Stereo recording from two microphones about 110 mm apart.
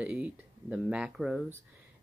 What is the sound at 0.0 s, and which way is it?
Speech, 10° right (ahead or behind).